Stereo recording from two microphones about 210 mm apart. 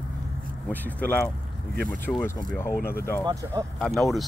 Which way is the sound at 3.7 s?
Centre (ahead or behind).